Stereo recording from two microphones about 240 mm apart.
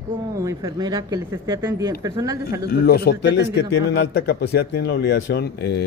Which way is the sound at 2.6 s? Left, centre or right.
Left.